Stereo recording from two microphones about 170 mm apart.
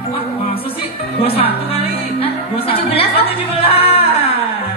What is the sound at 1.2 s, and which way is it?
Music, 35° left (ahead or behind).